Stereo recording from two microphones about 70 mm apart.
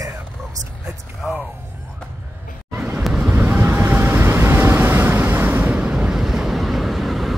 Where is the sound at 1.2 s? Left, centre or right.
Centre.